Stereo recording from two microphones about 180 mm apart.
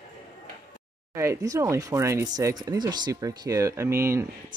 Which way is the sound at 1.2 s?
15° right (ahead or behind).